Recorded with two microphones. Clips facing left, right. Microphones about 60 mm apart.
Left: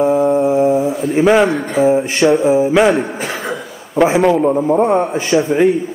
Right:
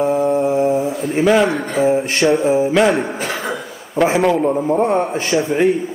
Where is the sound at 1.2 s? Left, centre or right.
Left.